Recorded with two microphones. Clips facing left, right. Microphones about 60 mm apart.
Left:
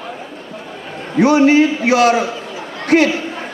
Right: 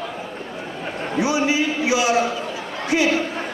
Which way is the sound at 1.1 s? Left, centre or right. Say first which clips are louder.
Left 10 dB; left.